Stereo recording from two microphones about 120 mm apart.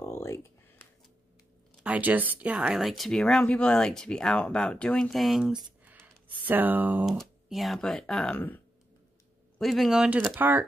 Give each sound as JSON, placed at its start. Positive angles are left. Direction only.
{"t": 0.0, "sound": "a sound", "side_deg": 20}
{"t": 1.8, "sound": "speech", "side_deg": -15}
{"t": 6.4, "sound": "speech", "side_deg": -15}
{"t": 7.1, "sound": "speech", "side_deg": 0}
{"t": 9.6, "sound": "speech", "side_deg": 0}